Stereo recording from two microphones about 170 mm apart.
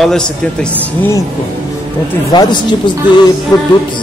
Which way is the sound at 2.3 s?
25° left (ahead or behind).